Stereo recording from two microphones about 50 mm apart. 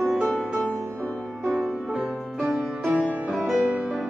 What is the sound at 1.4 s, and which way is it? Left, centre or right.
Music, centre.